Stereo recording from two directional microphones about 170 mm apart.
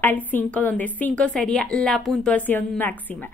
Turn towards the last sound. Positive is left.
turn(degrees=10)  # may be behind; listen again after turning